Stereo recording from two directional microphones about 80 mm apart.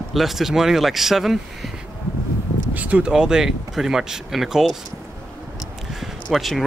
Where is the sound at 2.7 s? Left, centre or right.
Centre.